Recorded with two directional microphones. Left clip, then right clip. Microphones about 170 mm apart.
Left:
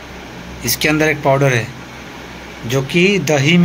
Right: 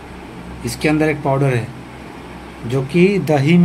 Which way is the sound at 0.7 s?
5° right (ahead or behind).